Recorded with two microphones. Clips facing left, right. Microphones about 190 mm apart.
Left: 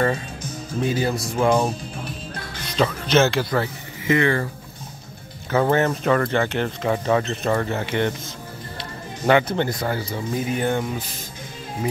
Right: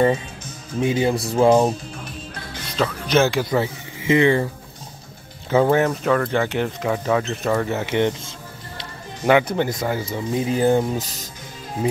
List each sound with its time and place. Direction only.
0.7 s speech: 20° right (ahead or behind)
1.3 s speech: 30° right (ahead or behind)
3.1 s speech: 10° right (ahead or behind)
5.5 s speech: 10° right (ahead or behind)
5.9 s speech: centre (ahead or behind)
7.8 s speech: 20° right (ahead or behind)
9.2 s speech: 10° right (ahead or behind)
10.3 s speech: 30° right (ahead or behind)